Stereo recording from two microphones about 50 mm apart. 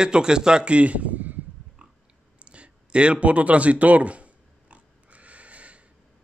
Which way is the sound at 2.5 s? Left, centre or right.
Right.